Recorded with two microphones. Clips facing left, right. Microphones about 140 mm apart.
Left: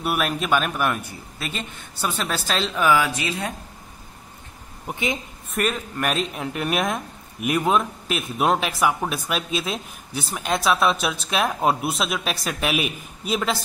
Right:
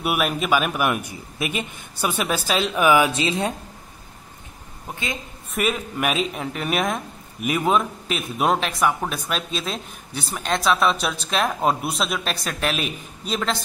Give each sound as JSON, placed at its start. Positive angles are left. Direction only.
{"t": 0.0, "sound": "a man's voice", "side_deg": -10}
{"t": 4.8, "sound": "a woman's voice", "side_deg": 15}
{"t": 5.5, "sound": "speech", "side_deg": -5}